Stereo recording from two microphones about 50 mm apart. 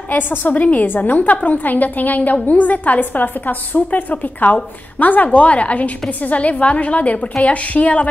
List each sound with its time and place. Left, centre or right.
0.1 s a woman's voice: left